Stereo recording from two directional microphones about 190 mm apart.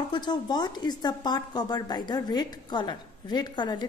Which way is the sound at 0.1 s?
20° left (ahead or behind).